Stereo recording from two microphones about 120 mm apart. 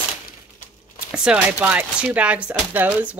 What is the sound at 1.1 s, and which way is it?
Speech, 10° right (ahead or behind).